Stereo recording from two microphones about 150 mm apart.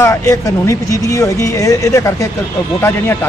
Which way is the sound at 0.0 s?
20° left (ahead or behind).